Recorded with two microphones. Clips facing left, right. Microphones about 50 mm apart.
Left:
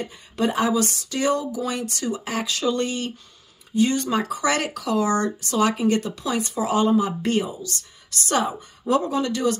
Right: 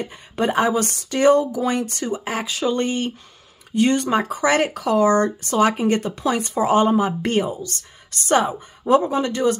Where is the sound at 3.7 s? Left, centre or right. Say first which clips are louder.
Right 3 dB; right.